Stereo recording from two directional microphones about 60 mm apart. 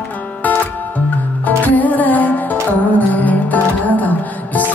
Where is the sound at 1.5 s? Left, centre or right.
Left.